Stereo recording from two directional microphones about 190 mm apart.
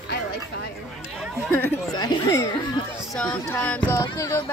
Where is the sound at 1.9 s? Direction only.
20° left (ahead or behind).